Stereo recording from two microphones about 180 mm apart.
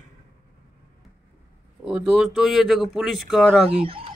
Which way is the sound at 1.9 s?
5° right (ahead or behind).